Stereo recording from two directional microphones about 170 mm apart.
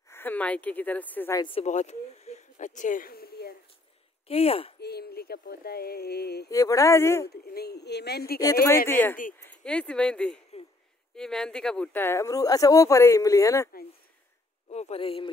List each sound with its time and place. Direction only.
0.1 s speech: 10° left (ahead or behind)
1.4 s speech: 35° left (ahead or behind); by 3.5 s 65° left (ahead or behind)
4.3 s speech: 35° left (ahead or behind)
4.7 s a sound: 70° left (ahead or behind)
6.5 s speech: 20° left (ahead or behind)
7.2 s a woman's voice: 70° left (ahead or behind)
8.8 s speech: 10° left (ahead or behind)
14.7 s speech: 40° left (ahead or behind)